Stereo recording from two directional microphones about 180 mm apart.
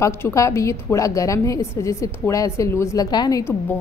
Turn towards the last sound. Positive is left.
turn(degrees=10)  # may be behind; listen again after turning